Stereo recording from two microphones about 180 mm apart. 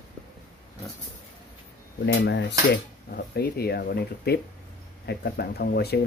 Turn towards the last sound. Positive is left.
turn(degrees=60)  # may be behind; listen again after turning